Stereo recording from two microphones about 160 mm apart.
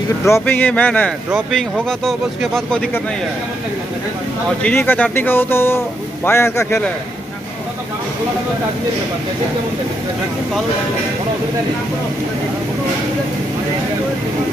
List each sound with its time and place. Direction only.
0.2 s speech: 15° left (ahead or behind)
4.6 s speech: 10° left (ahead or behind)